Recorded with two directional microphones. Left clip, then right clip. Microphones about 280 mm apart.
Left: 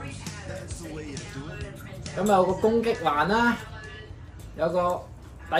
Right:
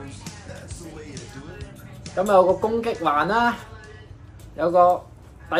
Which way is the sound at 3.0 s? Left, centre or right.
Right.